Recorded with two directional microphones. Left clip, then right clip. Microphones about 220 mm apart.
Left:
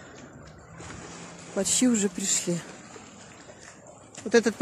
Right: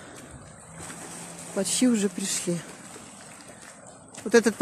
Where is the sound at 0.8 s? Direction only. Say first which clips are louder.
Right 1 dB; 50° right (ahead or behind).